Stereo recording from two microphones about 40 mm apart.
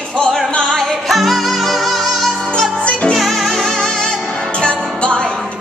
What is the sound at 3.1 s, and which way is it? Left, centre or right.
Music, centre.